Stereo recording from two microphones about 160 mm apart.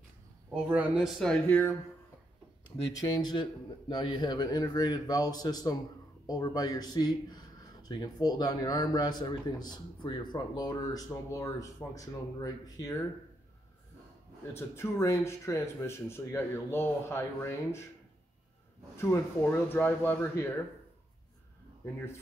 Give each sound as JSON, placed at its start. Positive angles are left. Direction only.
{"t": 0.7, "sound": "a man's voice", "side_deg": -10}
{"t": 1.2, "sound": "speech", "side_deg": 5}
{"t": 3.0, "sound": "speech", "side_deg": 25}
{"t": 14.4, "sound": "speech", "side_deg": 15}
{"t": 18.9, "sound": "speech", "side_deg": 15}
{"t": 21.8, "sound": "speech", "side_deg": 10}